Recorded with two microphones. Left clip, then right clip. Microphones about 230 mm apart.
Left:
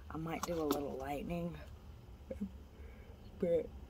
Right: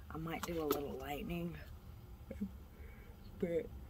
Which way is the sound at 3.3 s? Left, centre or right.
Centre.